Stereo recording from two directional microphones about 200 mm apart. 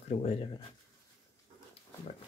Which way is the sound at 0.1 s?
35° left (ahead or behind).